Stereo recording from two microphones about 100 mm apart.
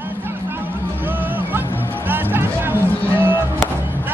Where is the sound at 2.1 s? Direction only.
20° right (ahead or behind).